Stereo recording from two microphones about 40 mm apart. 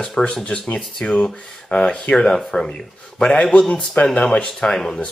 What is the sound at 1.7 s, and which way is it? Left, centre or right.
Speech, left.